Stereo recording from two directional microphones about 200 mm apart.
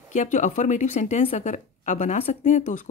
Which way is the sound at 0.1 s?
35° left (ahead or behind).